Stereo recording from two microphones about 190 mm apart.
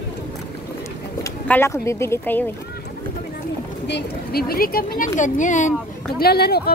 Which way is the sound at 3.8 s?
60° left (ahead or behind).